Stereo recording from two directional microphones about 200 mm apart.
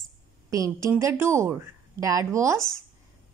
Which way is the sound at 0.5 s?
15° right (ahead or behind).